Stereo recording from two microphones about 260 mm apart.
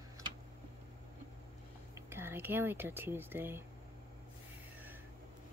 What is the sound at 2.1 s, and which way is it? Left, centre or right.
Speech, centre.